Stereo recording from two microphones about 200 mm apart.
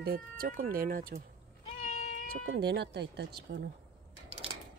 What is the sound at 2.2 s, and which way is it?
Speech, 50° right (ahead or behind).